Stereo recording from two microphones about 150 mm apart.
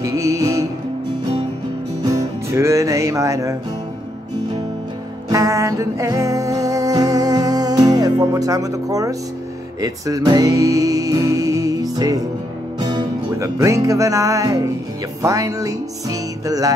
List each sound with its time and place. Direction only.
0.0 s music: 20° right (ahead or behind)
2.0 s music: 20° right (ahead or behind)
5.3 s music: 20° right (ahead or behind)